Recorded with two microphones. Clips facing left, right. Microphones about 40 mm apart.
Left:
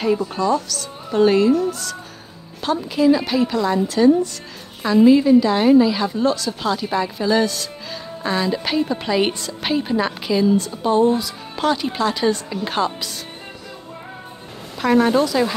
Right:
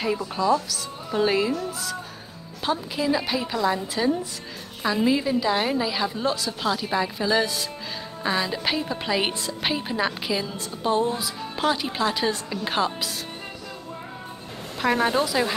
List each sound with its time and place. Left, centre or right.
0.4 s a woman's voice: centre
14.8 s a woman's voice: centre